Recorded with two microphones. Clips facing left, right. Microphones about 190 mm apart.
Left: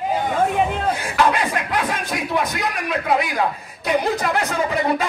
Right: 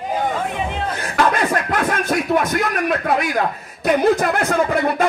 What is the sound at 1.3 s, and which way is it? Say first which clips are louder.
Speech: right 3 dB; 45° right (ahead or behind).